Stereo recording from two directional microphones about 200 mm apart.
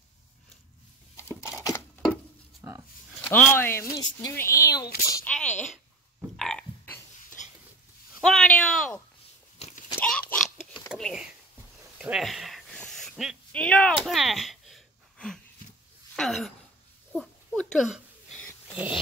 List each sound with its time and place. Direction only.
2.6 s a sound: 15° right (ahead or behind)
3.3 s speech: 10° left (ahead or behind)
5.3 s speech: 5° left (ahead or behind)
6.3 s frog: centre (ahead or behind)
8.2 s speech: 5° left (ahead or behind)
9.9 s a sound: 5° left (ahead or behind)